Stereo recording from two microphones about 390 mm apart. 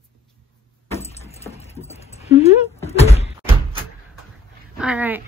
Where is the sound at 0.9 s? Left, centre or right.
Centre.